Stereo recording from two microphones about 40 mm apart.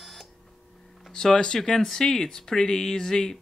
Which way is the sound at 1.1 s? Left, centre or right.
Centre.